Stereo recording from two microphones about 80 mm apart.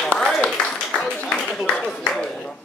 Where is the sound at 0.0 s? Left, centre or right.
Centre.